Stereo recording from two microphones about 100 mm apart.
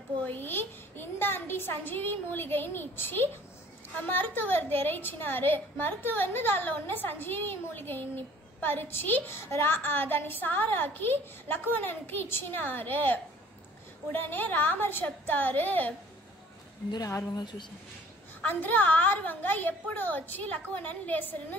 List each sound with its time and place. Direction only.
0.2 s a woman's voice: 20° left (ahead or behind)
17.4 s speech: 50° left (ahead or behind)
18.4 s a woman's voice: 15° left (ahead or behind)